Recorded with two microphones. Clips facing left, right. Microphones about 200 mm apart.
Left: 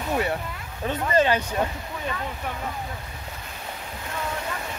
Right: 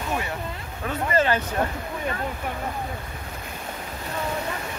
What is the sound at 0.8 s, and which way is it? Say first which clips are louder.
Speech: left 1 dB; 20° left (ahead or behind).